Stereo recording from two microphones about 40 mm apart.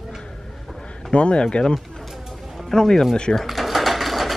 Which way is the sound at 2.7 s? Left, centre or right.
Centre.